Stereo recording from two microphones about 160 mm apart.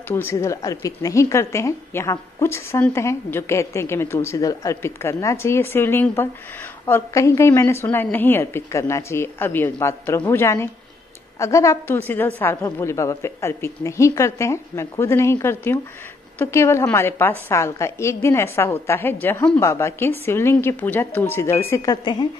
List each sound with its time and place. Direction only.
0.1 s a woman's voice: 15° left (ahead or behind)